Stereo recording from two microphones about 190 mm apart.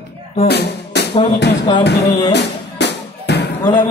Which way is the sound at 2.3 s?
65° left (ahead or behind).